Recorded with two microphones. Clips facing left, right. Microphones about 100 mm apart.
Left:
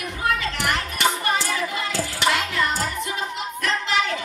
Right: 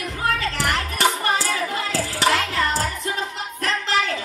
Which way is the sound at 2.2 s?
35° right (ahead or behind).